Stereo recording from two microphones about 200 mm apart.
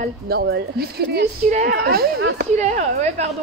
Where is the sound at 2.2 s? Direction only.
75° right (ahead or behind).